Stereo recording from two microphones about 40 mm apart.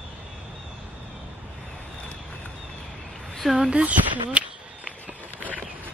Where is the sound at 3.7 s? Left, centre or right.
Right.